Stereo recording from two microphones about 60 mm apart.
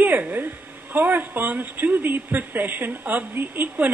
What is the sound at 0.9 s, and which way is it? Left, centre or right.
Speech, right.